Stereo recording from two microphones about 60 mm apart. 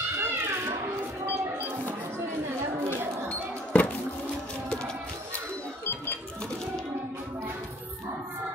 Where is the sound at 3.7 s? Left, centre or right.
Left.